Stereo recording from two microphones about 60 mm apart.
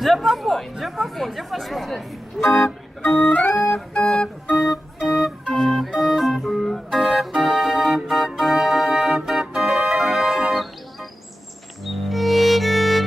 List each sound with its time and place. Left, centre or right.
0.0 s speech: centre
3.0 s music: left
4.6 s organ: centre
5.5 s music: centre
5.9 s organ: centre
11.8 s music: centre